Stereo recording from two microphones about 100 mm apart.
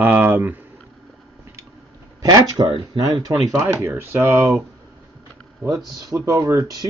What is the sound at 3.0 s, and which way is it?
Speech, 35° right (ahead or behind).